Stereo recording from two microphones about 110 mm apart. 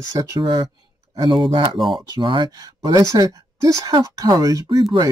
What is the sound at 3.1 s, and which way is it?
Speech, 35° right (ahead or behind).